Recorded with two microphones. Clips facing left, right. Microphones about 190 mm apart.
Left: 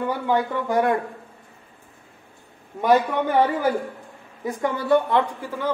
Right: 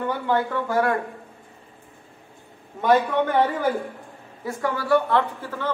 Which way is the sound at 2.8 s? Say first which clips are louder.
Even; 10° left (ahead or behind).